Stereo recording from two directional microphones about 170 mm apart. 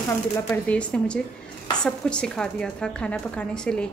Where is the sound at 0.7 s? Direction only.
5° left (ahead or behind).